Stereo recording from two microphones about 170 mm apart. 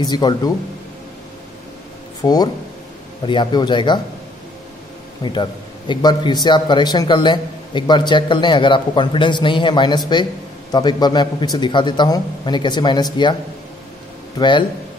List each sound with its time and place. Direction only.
0.0 s a man's voice: 25° left (ahead or behind)
2.2 s a man's voice: 25° left (ahead or behind)
5.2 s a man's voice: 25° left (ahead or behind)